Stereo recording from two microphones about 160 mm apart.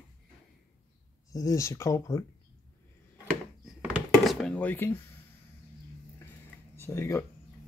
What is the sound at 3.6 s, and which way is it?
Dishes, centre (ahead or behind).